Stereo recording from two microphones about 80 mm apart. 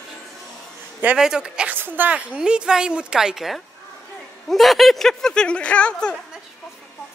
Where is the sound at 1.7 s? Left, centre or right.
Right; by 6.1 s centre.